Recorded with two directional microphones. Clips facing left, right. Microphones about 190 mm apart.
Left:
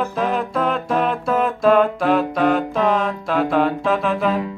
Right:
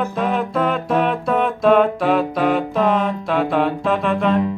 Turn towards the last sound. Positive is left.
turn(degrees=5)  # may be behind; listen again after turning